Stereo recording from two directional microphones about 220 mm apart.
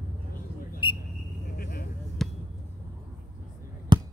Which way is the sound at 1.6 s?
40° left (ahead or behind).